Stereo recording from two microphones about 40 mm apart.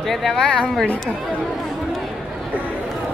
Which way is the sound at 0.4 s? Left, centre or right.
Left.